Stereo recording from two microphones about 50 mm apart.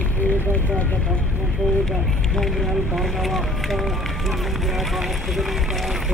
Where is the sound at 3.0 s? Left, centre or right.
Centre.